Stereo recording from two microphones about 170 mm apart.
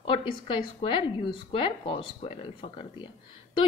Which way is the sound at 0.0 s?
30° left (ahead or behind).